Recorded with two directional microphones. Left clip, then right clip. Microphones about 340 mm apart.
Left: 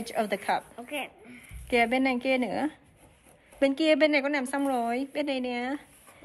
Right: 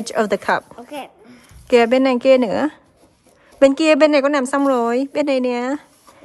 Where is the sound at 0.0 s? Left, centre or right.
Right.